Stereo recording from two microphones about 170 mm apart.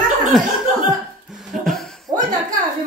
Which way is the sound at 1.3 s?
Centre (ahead or behind).